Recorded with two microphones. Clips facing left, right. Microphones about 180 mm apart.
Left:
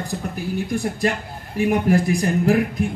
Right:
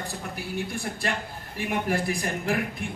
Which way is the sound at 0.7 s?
40° left (ahead or behind).